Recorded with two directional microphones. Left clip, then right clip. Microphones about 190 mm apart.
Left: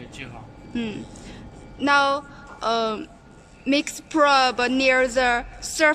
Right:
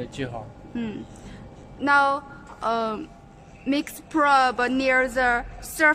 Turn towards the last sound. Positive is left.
turn(degrees=0)  # may be behind; listen again after turning